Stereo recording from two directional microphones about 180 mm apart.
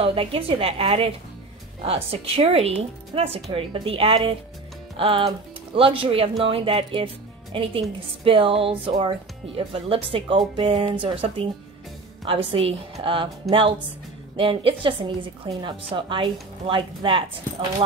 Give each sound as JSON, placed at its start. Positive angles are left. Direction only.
{"t": 0.0, "sound": "a woman's voice", "side_deg": -30}